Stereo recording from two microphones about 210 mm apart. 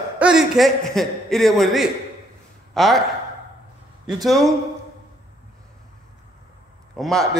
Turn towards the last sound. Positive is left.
turn(degrees=0)  # may be behind; listen again after turning